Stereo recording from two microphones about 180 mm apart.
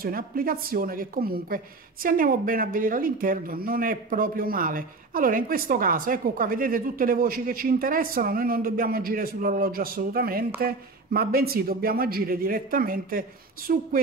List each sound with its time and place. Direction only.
0.0 s a woman's voice: 55° right (ahead or behind)